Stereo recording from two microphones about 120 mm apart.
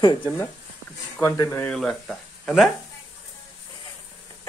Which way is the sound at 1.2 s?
25° left (ahead or behind).